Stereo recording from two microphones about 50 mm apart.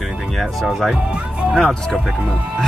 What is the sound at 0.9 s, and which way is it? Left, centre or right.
Speech, right.